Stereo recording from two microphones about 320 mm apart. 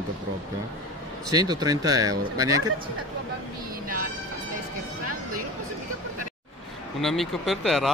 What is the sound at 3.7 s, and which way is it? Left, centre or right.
Music, right.